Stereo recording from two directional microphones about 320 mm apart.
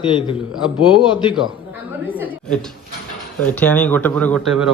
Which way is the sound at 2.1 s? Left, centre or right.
Centre.